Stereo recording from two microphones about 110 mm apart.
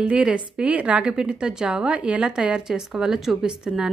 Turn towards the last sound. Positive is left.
turn(degrees=-5)  # may be behind; listen again after turning